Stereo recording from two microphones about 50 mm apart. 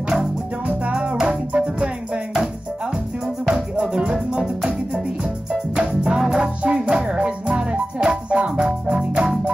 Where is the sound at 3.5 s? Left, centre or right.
Right.